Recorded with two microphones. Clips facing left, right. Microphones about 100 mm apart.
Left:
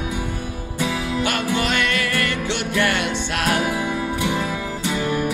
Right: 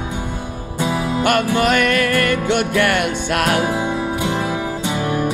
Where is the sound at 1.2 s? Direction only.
50° right (ahead or behind).